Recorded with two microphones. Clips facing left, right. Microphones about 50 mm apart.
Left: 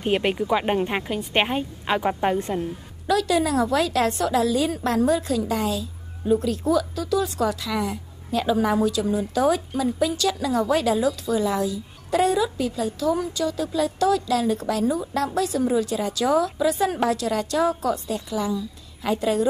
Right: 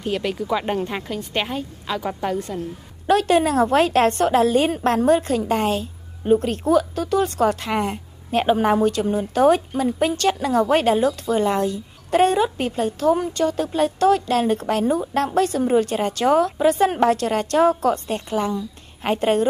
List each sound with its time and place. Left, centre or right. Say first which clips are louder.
0.0 s a woman's voice: left 2 dB; left
0.5 s a woman's voice: right 1 dB; centre
3.1 s a woman's voice: right 4 dB; right